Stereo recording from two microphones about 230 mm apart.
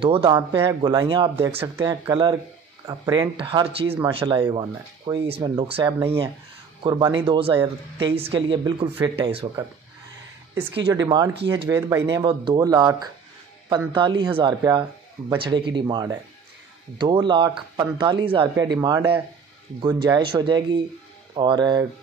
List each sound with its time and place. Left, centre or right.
0.0 s speech: right
10.9 s speech: centre